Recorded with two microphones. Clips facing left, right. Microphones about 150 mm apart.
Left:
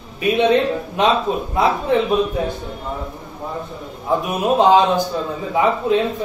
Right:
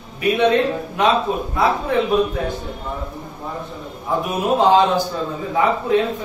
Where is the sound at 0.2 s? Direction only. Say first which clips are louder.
Left 1 dB; 20° left (ahead or behind).